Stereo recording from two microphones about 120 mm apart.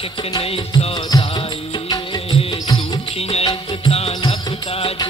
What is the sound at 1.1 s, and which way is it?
Music, 30° left (ahead or behind).